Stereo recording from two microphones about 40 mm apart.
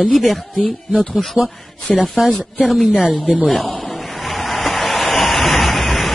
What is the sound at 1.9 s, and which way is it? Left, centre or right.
Speech, centre.